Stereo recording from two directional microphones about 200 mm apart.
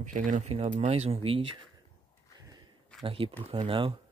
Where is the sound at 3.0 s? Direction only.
25° right (ahead or behind).